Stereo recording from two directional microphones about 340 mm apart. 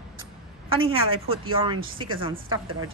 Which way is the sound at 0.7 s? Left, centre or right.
Centre.